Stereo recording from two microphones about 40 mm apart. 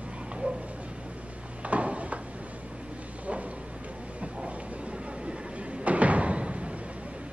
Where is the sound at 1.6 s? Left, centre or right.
Right.